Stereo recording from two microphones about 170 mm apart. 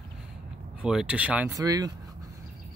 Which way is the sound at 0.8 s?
5° right (ahead or behind).